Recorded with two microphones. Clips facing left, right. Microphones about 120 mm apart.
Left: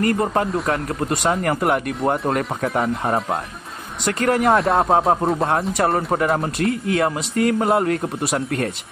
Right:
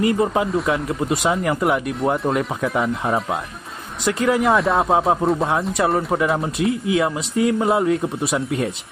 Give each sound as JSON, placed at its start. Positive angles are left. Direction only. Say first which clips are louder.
{"t": 0.0, "sound": "speech", "louder": "right 1 dB", "side_deg": -5}
{"t": 7.0, "sound": "speech", "louder": "even", "side_deg": 60}
{"t": 7.5, "sound": "speech", "louder": "even", "side_deg": 0}